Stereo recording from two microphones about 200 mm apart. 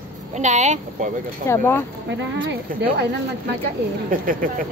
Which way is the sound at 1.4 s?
10° left (ahead or behind).